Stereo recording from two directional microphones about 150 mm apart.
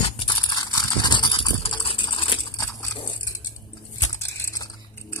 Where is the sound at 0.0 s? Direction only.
35° left (ahead or behind).